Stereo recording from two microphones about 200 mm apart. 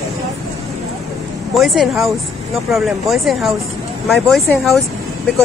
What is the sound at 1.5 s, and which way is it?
Speech, centre (ahead or behind).